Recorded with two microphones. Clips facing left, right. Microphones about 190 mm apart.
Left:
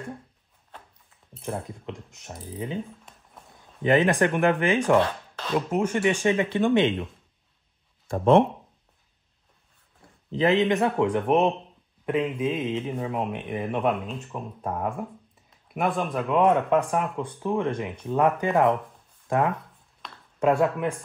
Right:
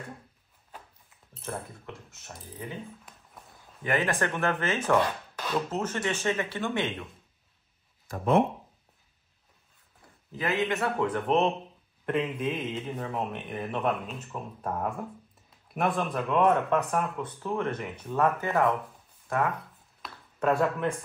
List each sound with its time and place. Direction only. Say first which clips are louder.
1.9 s speech: left 6 dB; 15° left (ahead or behind)
3.8 s speech: left 7 dB; 20° left (ahead or behind)
10.3 s speech: left 8 dB; 20° left (ahead or behind)
14.0 s speech: left 4 dB; centre (ahead or behind)
16.3 s speech: left 3 dB; 15° left (ahead or behind)
20.0 s a sound: even; 5° right (ahead or behind)
20.3 s speech: left 4 dB; 10° left (ahead or behind)